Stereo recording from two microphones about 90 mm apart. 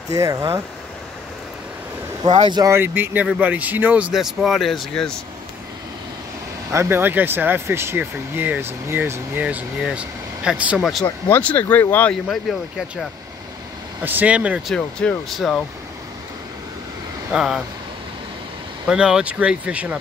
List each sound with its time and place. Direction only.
0.1 s speech: 35° right (ahead or behind)
2.2 s speech: 60° right (ahead or behind)
2.6 s speech: 25° right (ahead or behind)
4.1 s speech: 5° right (ahead or behind)
6.7 s speech: 30° right (ahead or behind); by 10.8 s 10° right (ahead or behind)
10.8 s speech: centre (ahead or behind)
11.2 s speech: 20° left (ahead or behind)
12.1 s speech: 5° left (ahead or behind)
14.0 s speech: 15° right (ahead or behind)
14.7 s speech: 10° left (ahead or behind)
17.3 s speech: 5° right (ahead or behind)
18.9 s speech: 10° right (ahead or behind)